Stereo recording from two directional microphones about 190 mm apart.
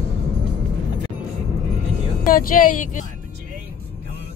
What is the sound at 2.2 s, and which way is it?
Speech, 45° left (ahead or behind).